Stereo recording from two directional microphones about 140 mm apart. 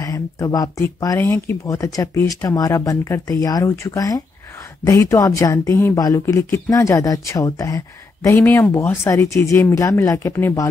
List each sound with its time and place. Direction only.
0.0 s a woman's voice: 25° left (ahead or behind)